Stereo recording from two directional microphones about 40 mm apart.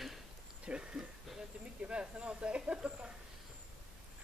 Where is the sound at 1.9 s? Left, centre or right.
Right.